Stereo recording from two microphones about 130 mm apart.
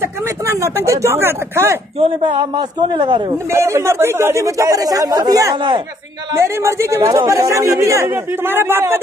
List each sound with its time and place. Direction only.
0.5 s a man's voice: 20° right (ahead or behind)
2.0 s a man's voice: 45° right (ahead or behind)
3.5 s a man's voice: 20° right (ahead or behind)
6.3 s a man's voice: 20° right (ahead or behind)